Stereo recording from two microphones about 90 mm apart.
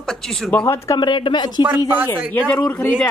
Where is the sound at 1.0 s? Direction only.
65° left (ahead or behind).